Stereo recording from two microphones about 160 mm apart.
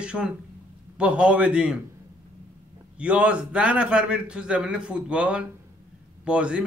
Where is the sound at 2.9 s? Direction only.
5° right (ahead or behind).